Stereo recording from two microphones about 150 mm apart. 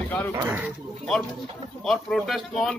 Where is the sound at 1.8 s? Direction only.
Centre (ahead or behind).